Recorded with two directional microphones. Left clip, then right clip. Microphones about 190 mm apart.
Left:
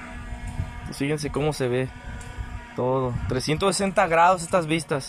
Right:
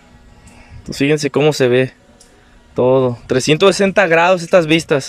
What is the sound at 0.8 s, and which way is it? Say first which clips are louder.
Speech: right 12 dB; 60° right (ahead or behind).